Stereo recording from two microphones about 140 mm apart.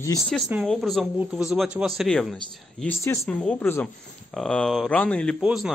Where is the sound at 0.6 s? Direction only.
Centre (ahead or behind).